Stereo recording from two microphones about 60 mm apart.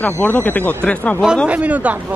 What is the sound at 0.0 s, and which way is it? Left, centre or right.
Speech, left.